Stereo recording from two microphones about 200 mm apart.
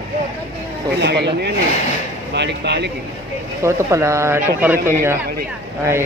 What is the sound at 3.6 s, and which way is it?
A man's voice, 15° right (ahead or behind).